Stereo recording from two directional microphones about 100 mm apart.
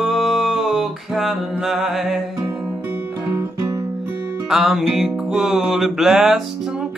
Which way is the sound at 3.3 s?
25° right (ahead or behind).